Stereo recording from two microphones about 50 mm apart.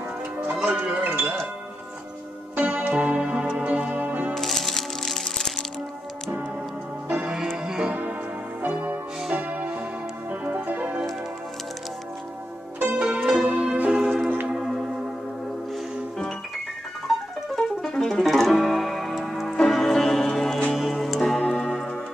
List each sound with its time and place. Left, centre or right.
0.7 s wind chime: right
2.5 s music: right
4.3 s music: centre
7.5 s music: centre
8.6 s music: right
12.7 s zither: right
13.2 s music: centre
13.5 s music: centre
14.5 s a sound: centre
17.1 s music: centre